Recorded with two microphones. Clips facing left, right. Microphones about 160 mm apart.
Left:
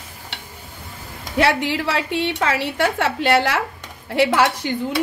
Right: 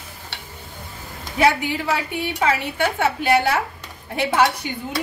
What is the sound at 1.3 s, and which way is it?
A woman's voice, 80° left.